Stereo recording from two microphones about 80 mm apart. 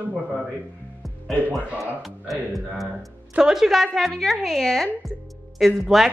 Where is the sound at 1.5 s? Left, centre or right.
Centre.